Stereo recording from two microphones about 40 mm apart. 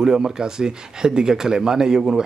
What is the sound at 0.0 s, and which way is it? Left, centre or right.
Speech, centre.